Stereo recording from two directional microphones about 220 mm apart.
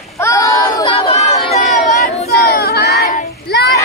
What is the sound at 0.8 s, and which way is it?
Chatter, 25° left (ahead or behind).